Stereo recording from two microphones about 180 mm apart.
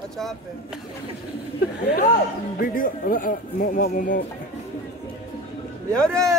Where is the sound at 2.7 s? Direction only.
50° left (ahead or behind).